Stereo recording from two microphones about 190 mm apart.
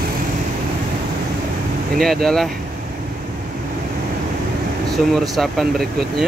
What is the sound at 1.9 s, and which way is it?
Speech, centre (ahead or behind).